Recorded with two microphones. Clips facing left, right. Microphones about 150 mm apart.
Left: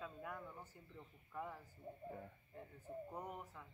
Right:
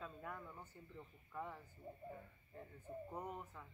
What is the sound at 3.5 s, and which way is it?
Speech, centre (ahead or behind).